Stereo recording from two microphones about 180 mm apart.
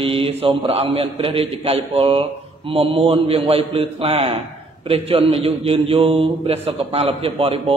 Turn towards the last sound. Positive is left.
turn(degrees=-30)  # may be behind; listen again after turning